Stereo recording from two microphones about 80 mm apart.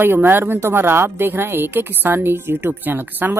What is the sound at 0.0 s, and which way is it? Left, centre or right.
A woman's voice, right.